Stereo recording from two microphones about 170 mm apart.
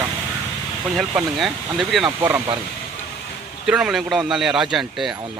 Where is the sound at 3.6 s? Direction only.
5° right (ahead or behind).